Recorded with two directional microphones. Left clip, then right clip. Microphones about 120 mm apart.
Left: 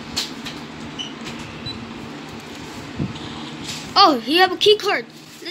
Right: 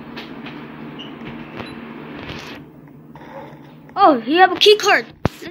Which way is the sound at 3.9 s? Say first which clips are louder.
Right 1 dB; 5° left (ahead or behind).